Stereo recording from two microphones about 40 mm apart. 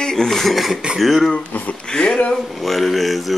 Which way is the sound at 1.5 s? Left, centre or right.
Left.